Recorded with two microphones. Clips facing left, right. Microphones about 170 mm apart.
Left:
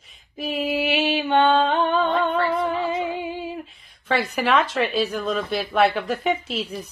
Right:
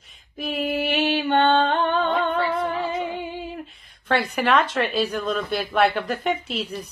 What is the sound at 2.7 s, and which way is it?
Speech, 5° left (ahead or behind).